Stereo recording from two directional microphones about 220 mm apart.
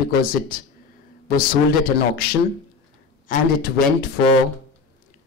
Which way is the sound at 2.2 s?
45° left (ahead or behind).